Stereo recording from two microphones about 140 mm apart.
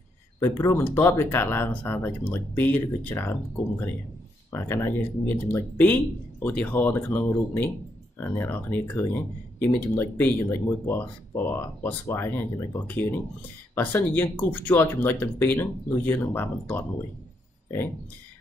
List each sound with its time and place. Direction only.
0.4 s speech: 20° left (ahead or behind)
4.5 s speech: 15° left (ahead or behind)